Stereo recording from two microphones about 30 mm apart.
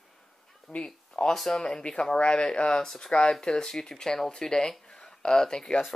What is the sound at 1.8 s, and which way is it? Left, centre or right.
Speech, left.